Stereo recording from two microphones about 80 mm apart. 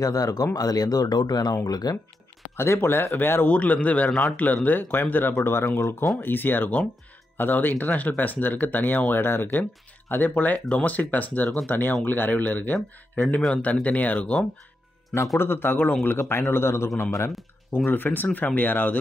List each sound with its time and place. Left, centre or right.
0.0 s speech: left
2.5 s a man's voice: left
4.1 s speech: centre
4.6 s a man's voice: left
13.8 s speech: centre
15.3 s a man's voice: left
17.3 s speech: centre
17.9 s a man's voice: left